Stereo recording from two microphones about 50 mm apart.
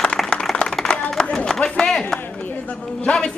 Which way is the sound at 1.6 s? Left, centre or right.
Centre.